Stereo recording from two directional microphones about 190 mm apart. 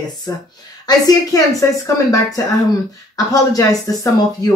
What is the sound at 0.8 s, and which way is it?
Speech, 20° left (ahead or behind).